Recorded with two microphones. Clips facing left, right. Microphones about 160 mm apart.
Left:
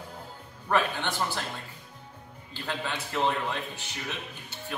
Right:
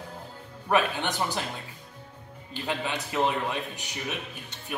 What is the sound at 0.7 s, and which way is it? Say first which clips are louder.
Speech: right 2 dB; 15° right (ahead or behind).